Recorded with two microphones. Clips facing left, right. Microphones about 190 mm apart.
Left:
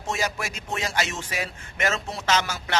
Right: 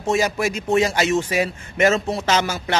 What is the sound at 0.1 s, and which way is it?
A man's voice, 15° right (ahead or behind).